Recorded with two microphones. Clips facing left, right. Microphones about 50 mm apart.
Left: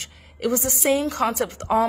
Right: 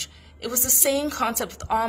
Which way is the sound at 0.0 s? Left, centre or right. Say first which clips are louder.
Left 7 dB; left.